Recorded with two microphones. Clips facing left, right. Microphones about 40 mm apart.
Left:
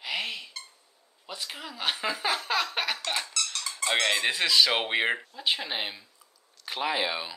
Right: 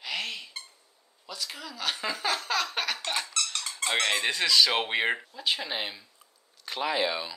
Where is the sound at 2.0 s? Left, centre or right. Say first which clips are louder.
Even; centre.